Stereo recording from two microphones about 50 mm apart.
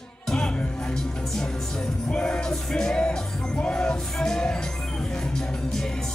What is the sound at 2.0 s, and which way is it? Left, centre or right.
Music, centre.